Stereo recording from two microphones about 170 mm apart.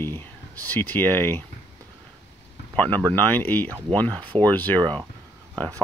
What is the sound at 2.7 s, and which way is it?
Speech, 10° left (ahead or behind).